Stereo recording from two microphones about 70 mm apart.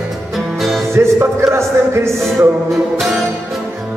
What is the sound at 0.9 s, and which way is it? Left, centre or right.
Music, right.